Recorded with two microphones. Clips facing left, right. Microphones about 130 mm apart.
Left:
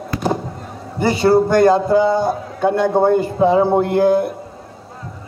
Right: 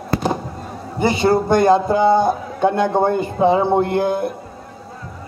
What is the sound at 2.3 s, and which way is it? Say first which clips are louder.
A man's voice: even; centre (ahead or behind).